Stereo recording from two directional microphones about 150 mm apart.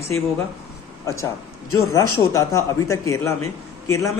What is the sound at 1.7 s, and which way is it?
A woman's voice, 20° left (ahead or behind).